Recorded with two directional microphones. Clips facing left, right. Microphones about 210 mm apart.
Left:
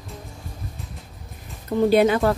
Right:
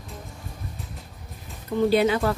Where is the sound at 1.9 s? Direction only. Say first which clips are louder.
Left 4 dB; 50° left (ahead or behind).